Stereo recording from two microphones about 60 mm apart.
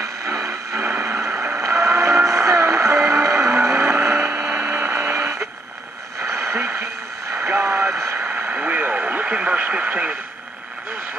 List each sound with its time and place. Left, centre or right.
0.0 s a sound: right
1.6 s vehicle: right
4.6 s a sound: right
4.9 s radio: right
6.3 s radio: right
8.2 s radio: right